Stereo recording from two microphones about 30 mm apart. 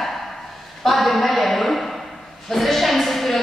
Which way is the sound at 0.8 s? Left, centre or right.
Centre.